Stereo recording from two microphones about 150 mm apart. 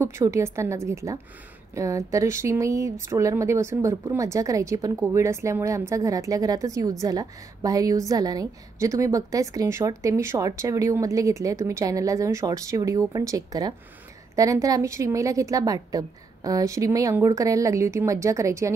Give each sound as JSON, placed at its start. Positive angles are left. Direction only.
{"t": 0.0, "sound": "speech", "side_deg": -20}